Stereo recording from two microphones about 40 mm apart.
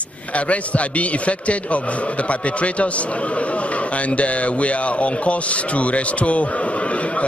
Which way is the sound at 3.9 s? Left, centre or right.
Left.